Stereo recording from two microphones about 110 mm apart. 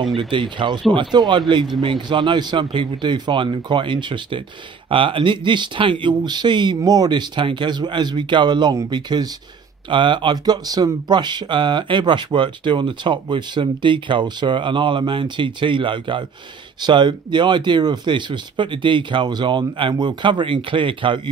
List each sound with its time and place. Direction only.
0.1 s speech: 45° right (ahead or behind)